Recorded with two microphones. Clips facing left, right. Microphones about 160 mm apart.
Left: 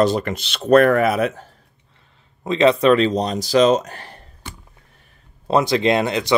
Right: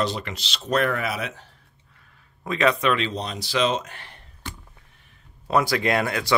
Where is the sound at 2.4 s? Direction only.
25° left (ahead or behind).